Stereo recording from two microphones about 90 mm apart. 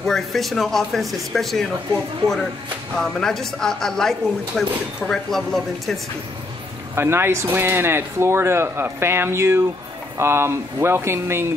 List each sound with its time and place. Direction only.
0.0 s speech: 5° left (ahead or behind)
3.0 s speech: 5° left (ahead or behind)
7.0 s speech: 30° right (ahead or behind)